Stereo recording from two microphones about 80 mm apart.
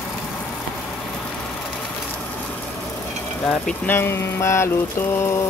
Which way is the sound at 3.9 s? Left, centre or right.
Left.